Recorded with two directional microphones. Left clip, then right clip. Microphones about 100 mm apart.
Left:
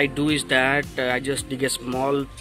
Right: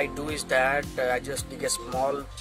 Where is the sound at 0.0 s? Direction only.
15° right (ahead or behind).